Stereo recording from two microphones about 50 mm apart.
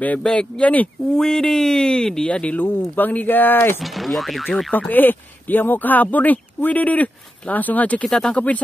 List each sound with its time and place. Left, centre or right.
0.2 s speech: centre
1.1 s speech: centre
2.2 s speech: left
2.5 s speech: left
3.8 s speech: centre
4.7 s speech: left
8.0 s speech: centre